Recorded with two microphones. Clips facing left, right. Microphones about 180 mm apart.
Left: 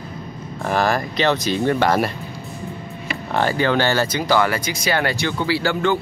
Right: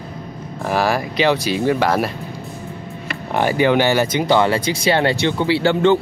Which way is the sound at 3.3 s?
15° right (ahead or behind).